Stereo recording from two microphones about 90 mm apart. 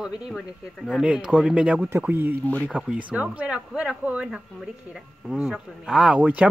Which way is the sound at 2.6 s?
10° right (ahead or behind).